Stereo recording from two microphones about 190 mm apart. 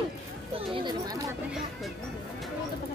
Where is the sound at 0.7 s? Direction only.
20° right (ahead or behind).